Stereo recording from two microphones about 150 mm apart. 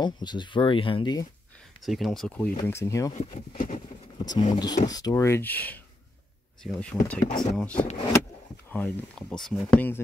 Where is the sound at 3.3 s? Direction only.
60° left (ahead or behind).